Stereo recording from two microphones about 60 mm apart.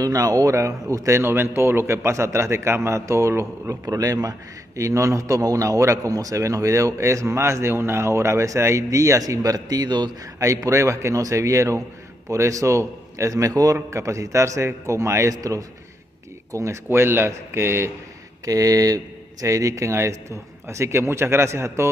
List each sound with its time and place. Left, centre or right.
0.0 s a man's voice: right
1.2 s a man's voice: right
3.8 s a man's voice: right
10.4 s a man's voice: right
13.7 s a man's voice: right
15.3 s speech: right
16.5 s a man's voice: right
18.4 s speech: right
19.4 s a man's voice: right